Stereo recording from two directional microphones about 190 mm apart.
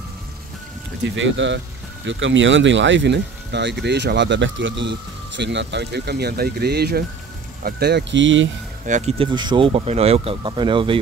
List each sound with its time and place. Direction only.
1.0 s speech: 80° right
8.8 s speech: 40° right (ahead or behind)